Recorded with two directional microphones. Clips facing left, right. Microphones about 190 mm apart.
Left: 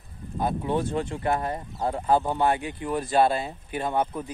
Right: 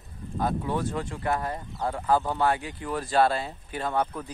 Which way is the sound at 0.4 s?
20° left (ahead or behind).